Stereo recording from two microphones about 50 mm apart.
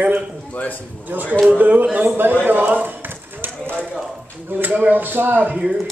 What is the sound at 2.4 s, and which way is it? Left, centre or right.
Clip-clop, right.